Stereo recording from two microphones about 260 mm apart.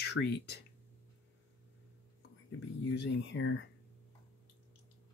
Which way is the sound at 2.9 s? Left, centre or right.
Left.